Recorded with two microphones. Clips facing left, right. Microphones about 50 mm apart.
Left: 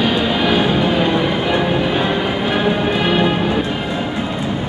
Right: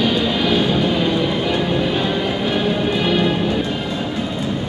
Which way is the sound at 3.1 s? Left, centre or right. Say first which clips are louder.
Left 2 dB; centre.